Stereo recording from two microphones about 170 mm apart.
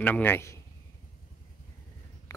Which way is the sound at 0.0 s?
10° left (ahead or behind).